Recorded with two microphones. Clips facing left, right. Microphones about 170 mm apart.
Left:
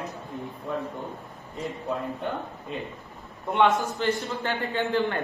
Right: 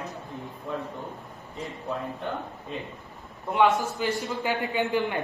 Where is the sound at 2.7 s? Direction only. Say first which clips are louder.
Left 2 dB; centre (ahead or behind).